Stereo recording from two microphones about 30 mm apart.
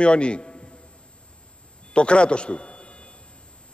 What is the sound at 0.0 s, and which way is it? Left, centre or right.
Speech, left.